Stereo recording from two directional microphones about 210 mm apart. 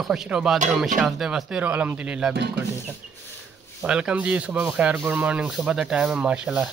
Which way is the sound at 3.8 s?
5° right (ahead or behind).